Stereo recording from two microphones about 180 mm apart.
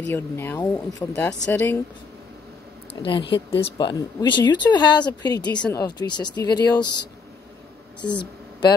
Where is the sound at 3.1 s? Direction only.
30° left (ahead or behind).